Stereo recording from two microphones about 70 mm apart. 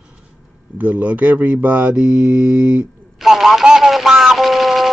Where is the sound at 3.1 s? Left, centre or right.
Centre.